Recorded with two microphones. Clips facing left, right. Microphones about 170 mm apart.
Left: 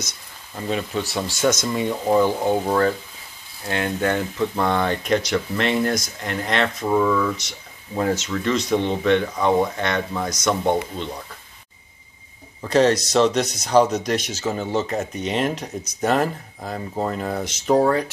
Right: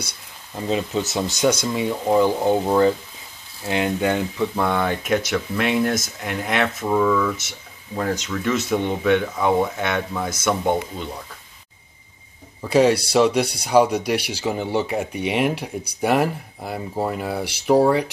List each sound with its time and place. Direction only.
0.6 s speech: 20° right (ahead or behind); by 11.1 s 5° right (ahead or behind)
12.6 s speech: 10° right (ahead or behind)